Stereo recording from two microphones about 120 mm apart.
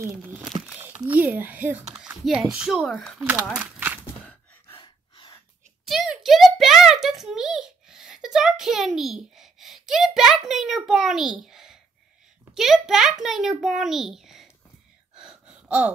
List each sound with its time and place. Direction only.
0.1 s a child's voice: 15° right (ahead or behind)
2.9 s a child's voice: 5° left (ahead or behind)
3.4 s a sound: 10° right (ahead or behind)
4.7 s gasp: 45° left (ahead or behind)
5.9 s a sound: 5° right (ahead or behind)
12.5 s a child's voice: 5° right (ahead or behind)
15.1 s gasp: 5° right (ahead or behind)